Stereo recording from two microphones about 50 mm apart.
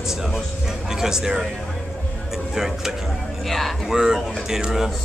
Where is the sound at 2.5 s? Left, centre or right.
Centre.